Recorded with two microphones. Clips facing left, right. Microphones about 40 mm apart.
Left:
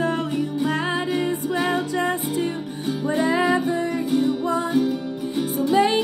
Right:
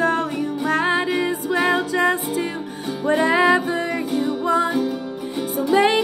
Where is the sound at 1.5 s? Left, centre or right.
Right.